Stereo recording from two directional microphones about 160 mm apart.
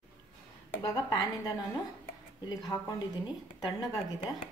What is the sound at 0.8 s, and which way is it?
Speech, 20° left (ahead or behind).